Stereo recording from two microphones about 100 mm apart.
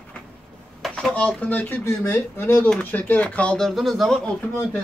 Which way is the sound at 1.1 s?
10° left (ahead or behind).